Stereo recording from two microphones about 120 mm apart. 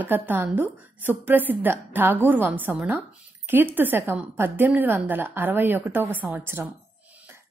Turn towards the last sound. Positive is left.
turn(degrees=-20)  # may be behind; listen again after turning